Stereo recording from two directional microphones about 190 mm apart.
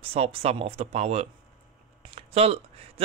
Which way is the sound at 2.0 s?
30° right (ahead or behind).